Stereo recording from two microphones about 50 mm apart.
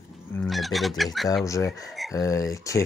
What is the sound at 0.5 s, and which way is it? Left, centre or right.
Speech, centre.